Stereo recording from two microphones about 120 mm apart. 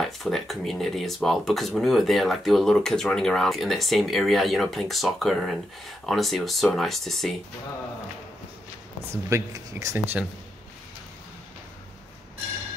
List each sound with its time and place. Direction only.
0.0 s speech: centre (ahead or behind)
9.1 s speech: 25° right (ahead or behind)